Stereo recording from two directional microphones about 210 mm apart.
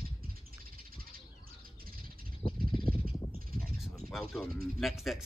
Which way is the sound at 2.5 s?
25° left (ahead or behind).